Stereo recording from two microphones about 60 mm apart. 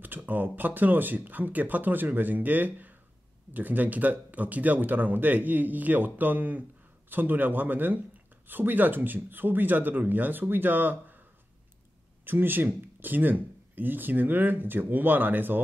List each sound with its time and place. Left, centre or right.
0.3 s speech: right
12.3 s speech: right